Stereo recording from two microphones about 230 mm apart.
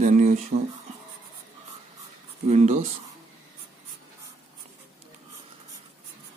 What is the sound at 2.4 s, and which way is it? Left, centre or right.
Speech, right.